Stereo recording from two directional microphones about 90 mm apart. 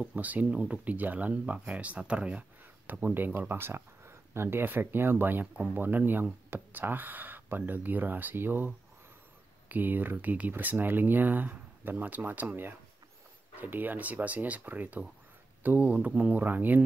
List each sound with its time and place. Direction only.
0.0 s speech: 15° right (ahead or behind)